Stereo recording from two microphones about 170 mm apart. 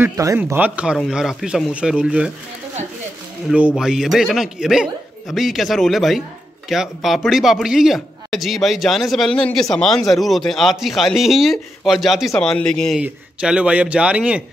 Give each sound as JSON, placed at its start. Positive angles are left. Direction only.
{"t": 0.0, "sound": "a man's voice", "side_deg": -20}
{"t": 3.4, "sound": "a man's voice", "side_deg": -5}